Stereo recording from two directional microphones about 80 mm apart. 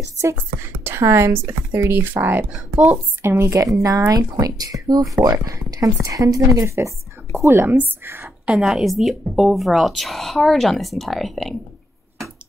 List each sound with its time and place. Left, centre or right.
0.8 s speech: right
2.7 s speech: centre
3.2 s a woman's voice: right
8.5 s speech: centre